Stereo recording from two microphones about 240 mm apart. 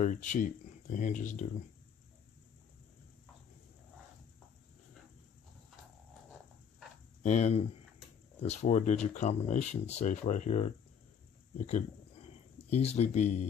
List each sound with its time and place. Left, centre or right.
0.0 s speech: left
7.2 s speech: left
11.5 s a sound: left